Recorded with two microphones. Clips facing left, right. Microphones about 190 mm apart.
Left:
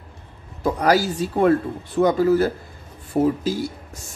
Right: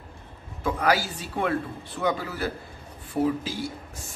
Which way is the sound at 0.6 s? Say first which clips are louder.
Left 6 dB; 40° left (ahead or behind).